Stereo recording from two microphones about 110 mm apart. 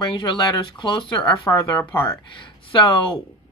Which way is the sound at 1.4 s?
30° left (ahead or behind).